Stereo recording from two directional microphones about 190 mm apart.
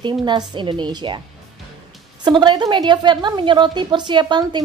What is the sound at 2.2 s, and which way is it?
A woman's voice, 25° right (ahead or behind).